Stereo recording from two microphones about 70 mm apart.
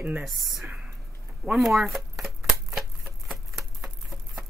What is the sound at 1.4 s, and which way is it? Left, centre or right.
Shuffling cards, centre.